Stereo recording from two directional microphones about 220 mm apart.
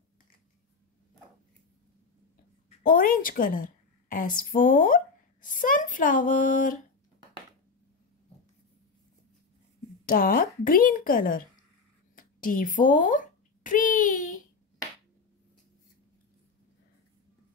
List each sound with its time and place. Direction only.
2.8 s a woman's voice: 40° left (ahead or behind)
10.0 s a woman's voice: 40° left (ahead or behind)